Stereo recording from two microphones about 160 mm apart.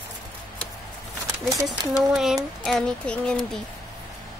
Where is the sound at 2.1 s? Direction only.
5° right (ahead or behind).